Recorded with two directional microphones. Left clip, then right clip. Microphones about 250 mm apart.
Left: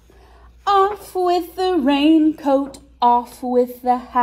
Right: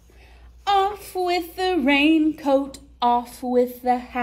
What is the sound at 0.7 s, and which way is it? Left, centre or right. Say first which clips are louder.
Child singing: left 4 dB; centre.